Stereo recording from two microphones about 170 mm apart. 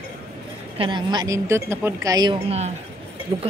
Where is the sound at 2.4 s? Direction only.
40° right (ahead or behind).